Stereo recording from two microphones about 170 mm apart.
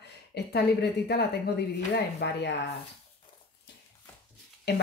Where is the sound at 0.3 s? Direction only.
75° left (ahead or behind).